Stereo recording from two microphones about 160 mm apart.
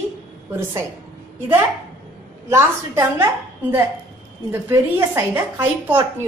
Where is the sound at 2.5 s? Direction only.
15° right (ahead or behind).